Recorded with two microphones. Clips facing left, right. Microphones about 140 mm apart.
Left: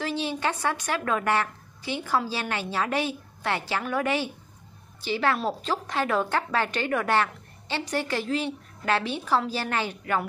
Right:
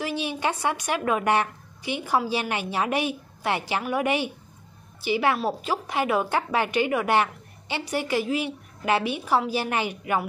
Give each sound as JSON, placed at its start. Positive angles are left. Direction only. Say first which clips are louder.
{"t": 0.0, "sound": "a woman's voice", "louder": "right 1 dB", "side_deg": -15}